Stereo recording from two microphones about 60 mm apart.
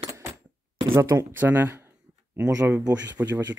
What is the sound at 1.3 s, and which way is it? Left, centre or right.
Speech, right.